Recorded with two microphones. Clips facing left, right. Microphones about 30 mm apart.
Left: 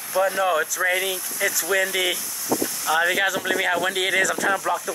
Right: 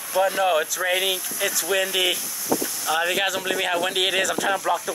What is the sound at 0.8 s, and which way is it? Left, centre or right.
Speech, right.